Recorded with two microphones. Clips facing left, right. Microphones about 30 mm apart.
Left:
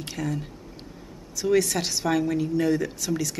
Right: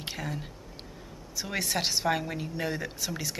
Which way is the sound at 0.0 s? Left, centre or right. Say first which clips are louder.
Left 5 dB; centre.